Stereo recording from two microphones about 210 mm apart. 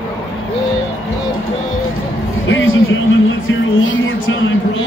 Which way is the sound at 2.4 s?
65° left (ahead or behind).